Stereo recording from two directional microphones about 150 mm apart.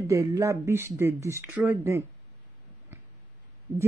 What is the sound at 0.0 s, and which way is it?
A man's voice, 20° right (ahead or behind).